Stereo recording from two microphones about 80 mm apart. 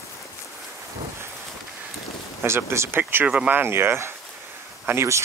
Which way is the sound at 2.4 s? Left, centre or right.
Right.